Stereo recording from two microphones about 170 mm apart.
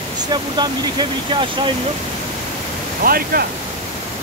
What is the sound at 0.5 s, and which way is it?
Speech, 25° right (ahead or behind).